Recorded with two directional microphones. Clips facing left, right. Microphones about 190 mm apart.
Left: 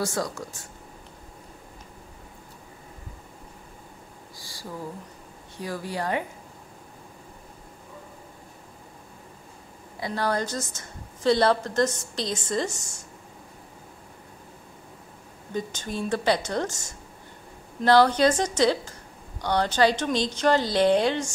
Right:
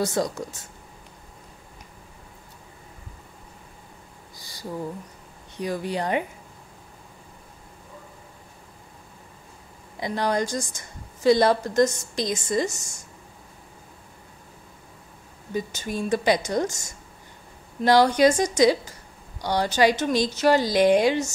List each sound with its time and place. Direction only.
0.0 s speech: 20° right (ahead or behind)
4.4 s a sound: 20° right (ahead or behind)
5.6 s speech: 20° right (ahead or behind)
9.9 s a woman's voice: 15° right (ahead or behind)
15.5 s a woman's voice: 10° right (ahead or behind)
17.8 s a woman's voice: 15° right (ahead or behind)